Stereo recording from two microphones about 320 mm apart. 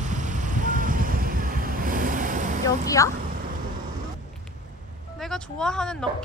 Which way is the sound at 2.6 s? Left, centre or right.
Centre.